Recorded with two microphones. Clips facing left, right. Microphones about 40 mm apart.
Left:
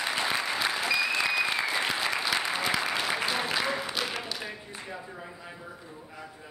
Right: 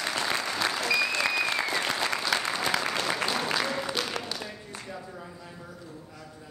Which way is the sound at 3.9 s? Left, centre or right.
Centre.